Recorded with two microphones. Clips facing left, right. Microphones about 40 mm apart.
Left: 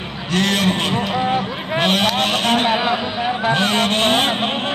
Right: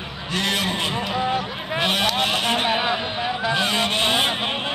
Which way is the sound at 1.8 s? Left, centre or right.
Left.